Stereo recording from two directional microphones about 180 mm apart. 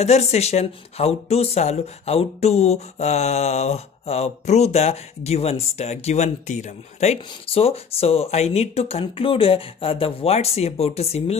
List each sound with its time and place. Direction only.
0.0 s speech: 35° left (ahead or behind)